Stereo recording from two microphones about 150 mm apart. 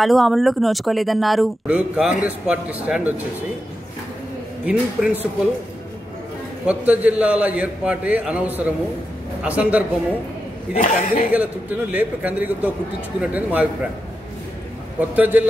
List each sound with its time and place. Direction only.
0.0 s speech: centre (ahead or behind)
4.6 s a man's voice: 10° right (ahead or behind)
6.6 s a man's voice: 10° right (ahead or behind)
10.7 s a man's voice: 65° left (ahead or behind)
11.3 s a man's voice: 10° right (ahead or behind)
15.0 s a man's voice: 10° right (ahead or behind)